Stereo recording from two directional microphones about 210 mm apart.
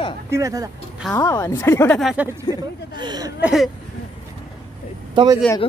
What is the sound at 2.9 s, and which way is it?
Speech, 20° right (ahead or behind).